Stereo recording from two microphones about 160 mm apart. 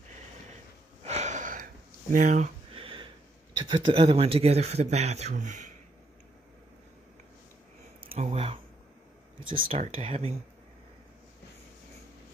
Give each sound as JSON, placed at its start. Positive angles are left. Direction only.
{"t": 1.0, "sound": "gasp", "side_deg": -45}
{"t": 2.1, "sound": "a sound", "side_deg": -50}
{"t": 3.6, "sound": "speech", "side_deg": -30}
{"t": 8.1, "sound": "speech", "side_deg": -35}
{"t": 9.7, "sound": "speech", "side_deg": -35}